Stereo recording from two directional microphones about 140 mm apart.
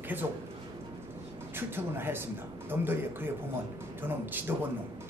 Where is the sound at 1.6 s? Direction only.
15° right (ahead or behind).